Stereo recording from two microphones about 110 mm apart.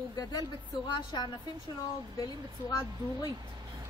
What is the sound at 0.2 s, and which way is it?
A woman's voice, 40° left (ahead or behind).